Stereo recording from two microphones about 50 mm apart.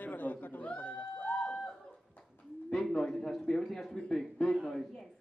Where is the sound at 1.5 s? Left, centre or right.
Centre.